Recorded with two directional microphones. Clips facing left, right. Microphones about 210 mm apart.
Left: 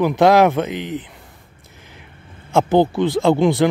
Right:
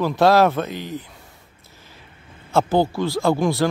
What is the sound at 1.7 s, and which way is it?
Vehicle, 20° left (ahead or behind).